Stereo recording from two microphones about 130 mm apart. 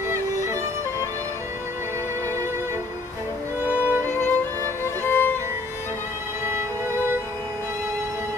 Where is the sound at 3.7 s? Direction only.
15° left (ahead or behind).